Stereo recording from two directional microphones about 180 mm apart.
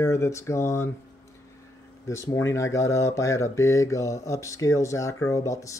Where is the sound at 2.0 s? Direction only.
15° left (ahead or behind).